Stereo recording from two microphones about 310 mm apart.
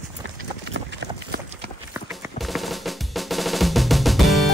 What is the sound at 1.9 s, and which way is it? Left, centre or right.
Music, centre.